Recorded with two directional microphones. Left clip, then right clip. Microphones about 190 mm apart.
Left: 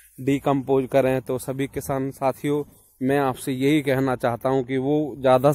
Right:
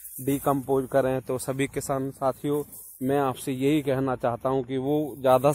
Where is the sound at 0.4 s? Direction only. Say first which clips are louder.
Left 3 dB; 35° left (ahead or behind).